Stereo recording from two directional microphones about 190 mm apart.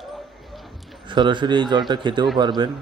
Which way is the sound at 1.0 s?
25° right (ahead or behind).